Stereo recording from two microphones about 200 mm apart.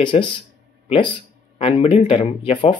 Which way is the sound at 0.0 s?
25° left (ahead or behind).